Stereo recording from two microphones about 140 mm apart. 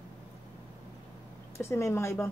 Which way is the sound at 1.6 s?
20° left (ahead or behind).